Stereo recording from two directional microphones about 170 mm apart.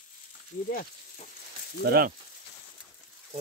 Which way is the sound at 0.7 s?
55° left (ahead or behind).